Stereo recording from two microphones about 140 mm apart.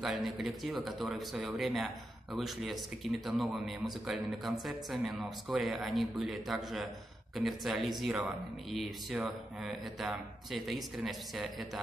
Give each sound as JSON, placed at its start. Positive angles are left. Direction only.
{"t": 0.0, "sound": "speech", "side_deg": 0}